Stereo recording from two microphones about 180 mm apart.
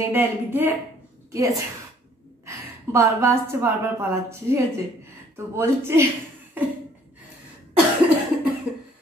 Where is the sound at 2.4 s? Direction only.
15° right (ahead or behind).